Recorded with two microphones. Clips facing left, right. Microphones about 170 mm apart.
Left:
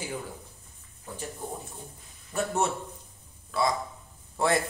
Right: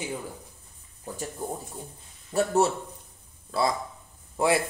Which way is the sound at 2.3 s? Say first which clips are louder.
Right 5 dB; 35° right (ahead or behind).